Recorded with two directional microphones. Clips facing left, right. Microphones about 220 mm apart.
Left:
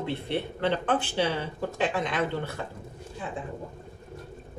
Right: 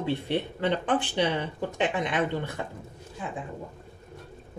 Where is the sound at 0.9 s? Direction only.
15° right (ahead or behind).